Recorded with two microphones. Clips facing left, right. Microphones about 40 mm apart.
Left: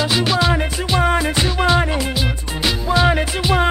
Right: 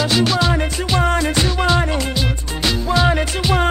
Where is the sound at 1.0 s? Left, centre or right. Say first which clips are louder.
Left 1 dB; centre.